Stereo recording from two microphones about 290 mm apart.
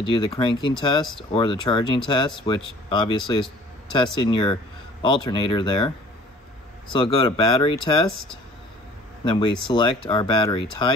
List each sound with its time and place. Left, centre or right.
0.0 s speech: centre
6.9 s speech: centre
9.2 s speech: centre